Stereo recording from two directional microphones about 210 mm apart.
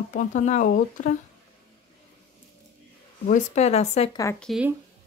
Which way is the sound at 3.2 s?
35° left (ahead or behind).